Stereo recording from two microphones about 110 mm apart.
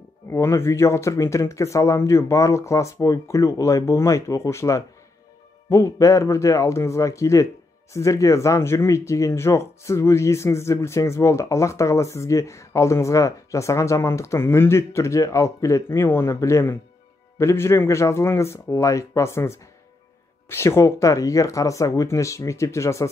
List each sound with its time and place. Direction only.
0.3 s speech: 25° left (ahead or behind)